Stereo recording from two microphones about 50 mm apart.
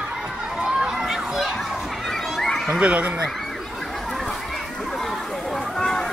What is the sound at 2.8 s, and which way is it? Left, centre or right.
Speech, right.